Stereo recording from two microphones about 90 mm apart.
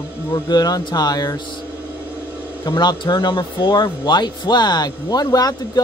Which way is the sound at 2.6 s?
55° left (ahead or behind).